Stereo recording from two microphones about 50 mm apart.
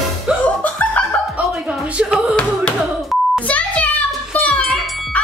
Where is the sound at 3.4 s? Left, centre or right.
Left.